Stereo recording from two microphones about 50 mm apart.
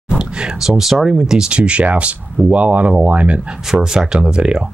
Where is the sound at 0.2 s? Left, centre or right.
Centre.